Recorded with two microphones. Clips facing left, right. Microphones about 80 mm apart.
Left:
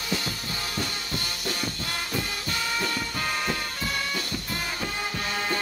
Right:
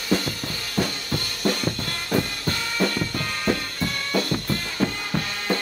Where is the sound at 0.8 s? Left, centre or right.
Right.